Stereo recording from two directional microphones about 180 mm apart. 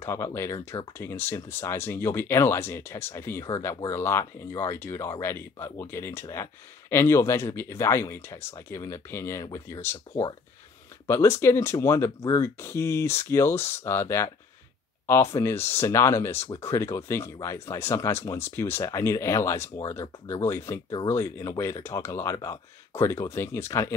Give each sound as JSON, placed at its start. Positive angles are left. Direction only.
{"t": 0.0, "sound": "speech", "side_deg": 15}